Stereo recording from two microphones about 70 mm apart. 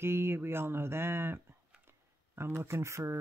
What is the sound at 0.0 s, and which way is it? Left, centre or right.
Speech, right.